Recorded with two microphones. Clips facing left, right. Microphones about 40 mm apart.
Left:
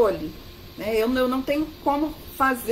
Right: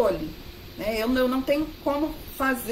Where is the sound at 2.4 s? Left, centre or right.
Left.